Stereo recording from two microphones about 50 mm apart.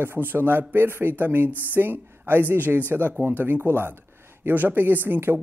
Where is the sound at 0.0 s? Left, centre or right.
Right.